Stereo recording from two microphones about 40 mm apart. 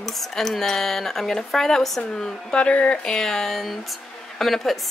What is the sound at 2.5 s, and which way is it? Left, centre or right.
Speech, left.